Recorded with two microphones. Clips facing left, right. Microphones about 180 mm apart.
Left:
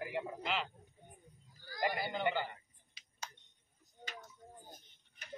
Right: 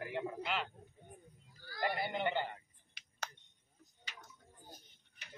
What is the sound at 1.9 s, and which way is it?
Speech, 25° right (ahead or behind).